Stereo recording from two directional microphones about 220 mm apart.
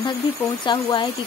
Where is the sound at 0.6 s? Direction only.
20° left (ahead or behind).